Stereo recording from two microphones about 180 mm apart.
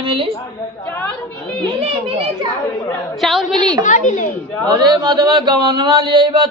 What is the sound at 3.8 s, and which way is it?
Speech, 45° left (ahead or behind).